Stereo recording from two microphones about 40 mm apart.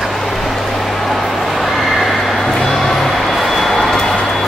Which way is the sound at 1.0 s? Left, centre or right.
Centre.